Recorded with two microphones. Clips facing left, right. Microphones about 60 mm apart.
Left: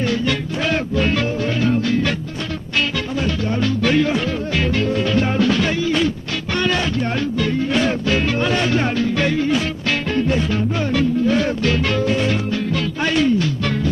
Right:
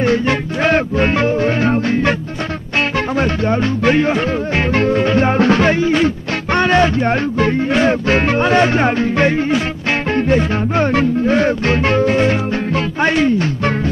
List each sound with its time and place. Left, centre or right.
0.0 s music: right
3.2 s music: right
3.6 s music: right